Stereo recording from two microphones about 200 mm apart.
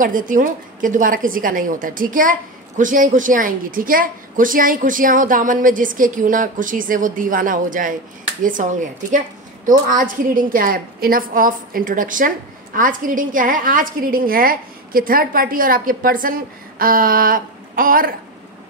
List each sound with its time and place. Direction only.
0.0 s a woman's voice: 40° right (ahead or behind)